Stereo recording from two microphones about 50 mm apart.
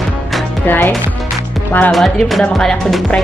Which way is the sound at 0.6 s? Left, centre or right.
Left.